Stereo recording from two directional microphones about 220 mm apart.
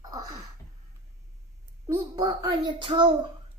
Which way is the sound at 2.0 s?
20° right (ahead or behind).